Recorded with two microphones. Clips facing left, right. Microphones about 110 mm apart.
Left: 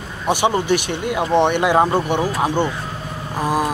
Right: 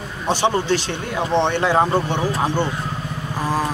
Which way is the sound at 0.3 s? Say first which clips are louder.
Left 2 dB; 15° left (ahead or behind).